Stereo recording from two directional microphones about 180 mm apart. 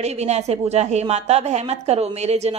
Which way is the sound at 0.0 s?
35° right (ahead or behind).